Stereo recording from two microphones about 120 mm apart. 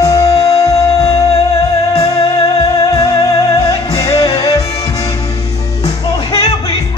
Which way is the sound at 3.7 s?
55° left (ahead or behind).